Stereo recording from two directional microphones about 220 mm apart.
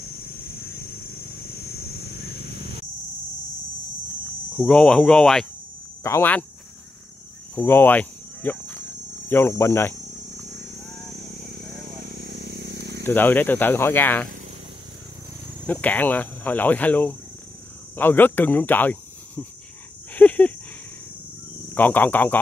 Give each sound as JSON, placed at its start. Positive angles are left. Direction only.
{"t": 4.6, "sound": "speech", "side_deg": 5}
{"t": 7.5, "sound": "cricket", "side_deg": 10}
{"t": 9.3, "sound": "speech", "side_deg": 10}
{"t": 12.1, "sound": "vehicle", "side_deg": -45}
{"t": 13.0, "sound": "speech", "side_deg": 10}
{"t": 15.6, "sound": "speech", "side_deg": 5}
{"t": 20.2, "sound": "a sound", "side_deg": 5}
{"t": 21.7, "sound": "speech", "side_deg": 10}